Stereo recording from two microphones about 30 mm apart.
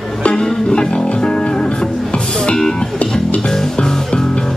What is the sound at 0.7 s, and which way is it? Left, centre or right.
Music, left.